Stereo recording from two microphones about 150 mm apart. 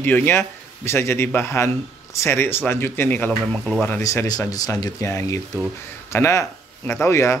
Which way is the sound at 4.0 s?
20° left (ahead or behind).